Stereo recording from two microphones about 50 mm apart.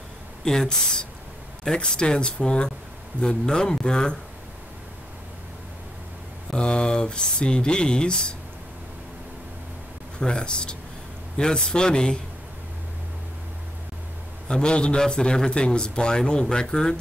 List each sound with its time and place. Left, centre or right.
0.5 s a man's voice: centre
6.5 s a man's voice: centre
10.1 s a man's voice: centre
14.5 s a man's voice: centre